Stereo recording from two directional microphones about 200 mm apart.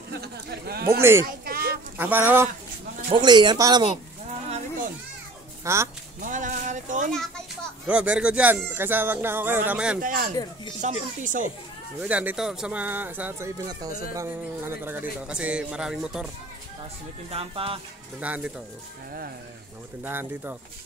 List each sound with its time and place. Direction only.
0.1 s a sound: 55° right (ahead or behind)
2.0 s speech: 10° right (ahead or behind)
3.1 s speech: 20° right (ahead or behind)
5.6 s speech: 15° right (ahead or behind)
6.2 s a sound: 40° right (ahead or behind)
7.1 s a child's voice: centre (ahead or behind)
10.0 s speech: 40° right (ahead or behind)
12.0 s speech: 5° right (ahead or behind)
17.3 s speech: 30° right (ahead or behind)
18.2 s speech: 5° right (ahead or behind)
20.0 s speech: 10° right (ahead or behind)